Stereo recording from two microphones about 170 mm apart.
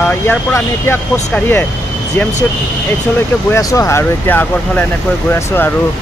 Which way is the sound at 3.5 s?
20° left (ahead or behind).